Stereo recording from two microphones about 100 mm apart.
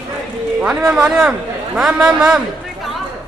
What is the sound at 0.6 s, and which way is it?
A man's voice, 10° right (ahead or behind).